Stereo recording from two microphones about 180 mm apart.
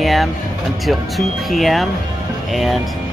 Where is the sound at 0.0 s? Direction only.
Centre (ahead or behind).